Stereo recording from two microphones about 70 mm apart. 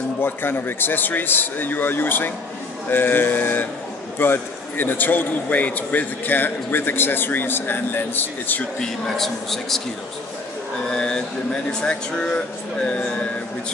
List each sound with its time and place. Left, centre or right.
0.2 s a man's voice: left
8.7 s a man's voice: centre
10.9 s speech: centre